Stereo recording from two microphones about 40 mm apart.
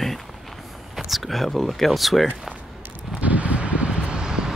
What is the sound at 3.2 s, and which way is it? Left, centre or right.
Vehicle, right.